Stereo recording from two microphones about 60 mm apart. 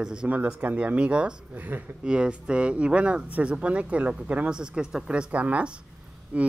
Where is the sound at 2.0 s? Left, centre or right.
Centre.